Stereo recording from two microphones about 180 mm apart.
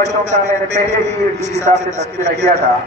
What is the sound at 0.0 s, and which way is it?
A man's voice, 40° right (ahead or behind).